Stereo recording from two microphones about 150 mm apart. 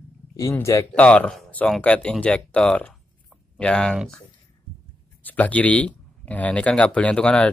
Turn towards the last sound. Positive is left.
turn(degrees=10)  # may be behind; listen again after turning